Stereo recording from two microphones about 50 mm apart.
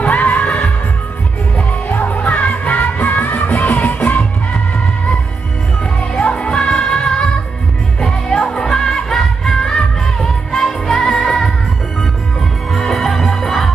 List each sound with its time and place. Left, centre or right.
0.0 s heart murmur: left
1.6 s music: left
5.9 s music: centre
12.7 s music: centre